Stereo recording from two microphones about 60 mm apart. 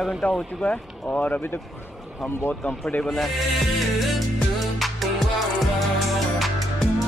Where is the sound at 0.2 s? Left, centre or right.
Left.